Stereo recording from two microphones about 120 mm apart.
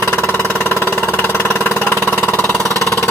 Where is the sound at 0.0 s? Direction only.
20° left (ahead or behind).